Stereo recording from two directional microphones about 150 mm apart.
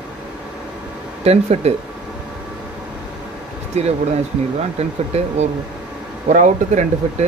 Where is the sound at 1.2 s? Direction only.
45° right (ahead or behind).